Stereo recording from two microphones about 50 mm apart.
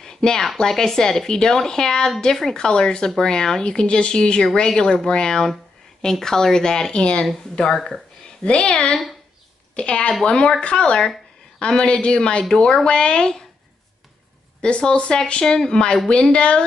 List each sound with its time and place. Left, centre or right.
0.0 s speech: centre
8.5 s speech: left
14.6 s speech: centre